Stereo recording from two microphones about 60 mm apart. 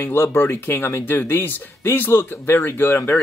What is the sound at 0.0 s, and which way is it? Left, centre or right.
Speech, left.